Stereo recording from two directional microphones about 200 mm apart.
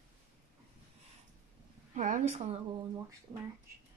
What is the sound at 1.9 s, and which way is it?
Speech, 40° right (ahead or behind).